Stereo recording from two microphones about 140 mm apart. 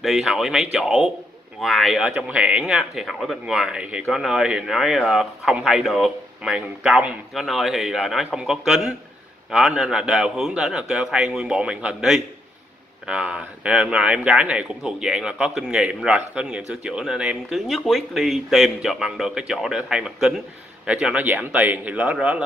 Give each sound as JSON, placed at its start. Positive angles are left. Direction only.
{"t": 0.0, "sound": "speech", "side_deg": 0}